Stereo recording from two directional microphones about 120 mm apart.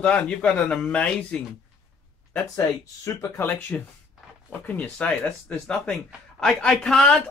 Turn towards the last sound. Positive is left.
turn(degrees=5)  # may be behind; listen again after turning